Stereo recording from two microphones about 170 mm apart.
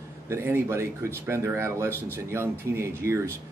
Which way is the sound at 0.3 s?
15° right (ahead or behind).